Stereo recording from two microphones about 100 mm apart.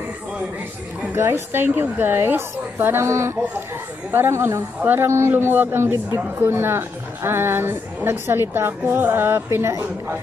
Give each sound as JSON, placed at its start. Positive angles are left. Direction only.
{"t": 1.0, "sound": "a woman's voice", "side_deg": -25}